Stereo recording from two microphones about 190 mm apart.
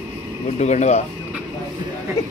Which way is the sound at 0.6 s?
35° left (ahead or behind).